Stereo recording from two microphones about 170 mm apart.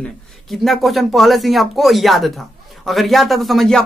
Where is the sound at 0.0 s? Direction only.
Centre (ahead or behind).